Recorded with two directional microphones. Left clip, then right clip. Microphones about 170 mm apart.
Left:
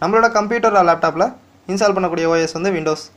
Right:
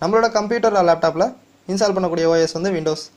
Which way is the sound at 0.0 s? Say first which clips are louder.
Left 3 dB; 25° right (ahead or behind).